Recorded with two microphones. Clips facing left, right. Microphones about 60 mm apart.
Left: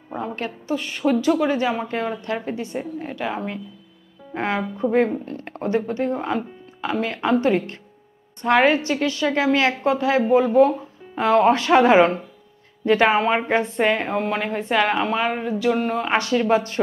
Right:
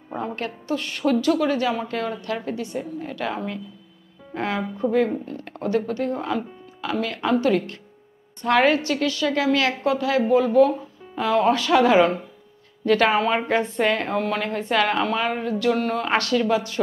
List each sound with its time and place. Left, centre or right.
0.1 s a woman's voice: centre; by 3.2 s left
3.2 s a woman's voice: centre
5.2 s a woman's voice: left; by 16.4 s centre
16.4 s a woman's voice: left